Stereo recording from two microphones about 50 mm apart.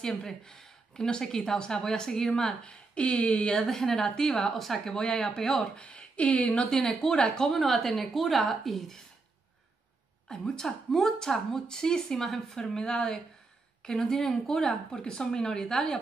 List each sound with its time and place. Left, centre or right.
0.0 s a woman's voice: centre
2.6 s speech: left
3.4 s a woman's voice: centre
5.8 s speech: left
6.6 s a woman's voice: centre
10.2 s a woman's voice: centre